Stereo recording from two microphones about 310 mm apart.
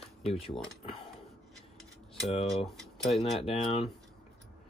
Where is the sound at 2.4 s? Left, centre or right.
Centre.